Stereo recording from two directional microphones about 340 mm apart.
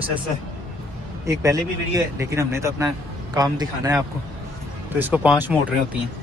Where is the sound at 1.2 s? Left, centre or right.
Centre.